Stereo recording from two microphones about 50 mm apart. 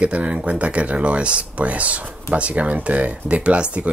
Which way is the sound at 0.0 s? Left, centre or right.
Right.